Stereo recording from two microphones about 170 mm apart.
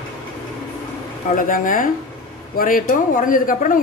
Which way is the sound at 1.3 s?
50° left (ahead or behind).